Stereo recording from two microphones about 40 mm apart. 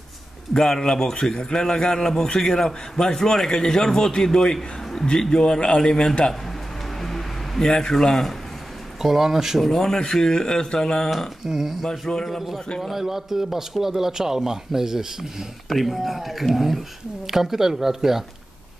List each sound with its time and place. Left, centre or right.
0.5 s a man's voice: centre
4.6 s a sound: centre
5.0 s a man's voice: centre
6.2 s music: centre
9.0 s a man's voice: centre
9.6 s a man's voice: centre
11.4 s a man's voice: centre
11.8 s speech: centre
12.8 s a man's voice: centre